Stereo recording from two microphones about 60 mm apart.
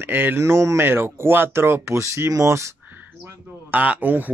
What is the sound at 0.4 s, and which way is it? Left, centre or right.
Speech, right.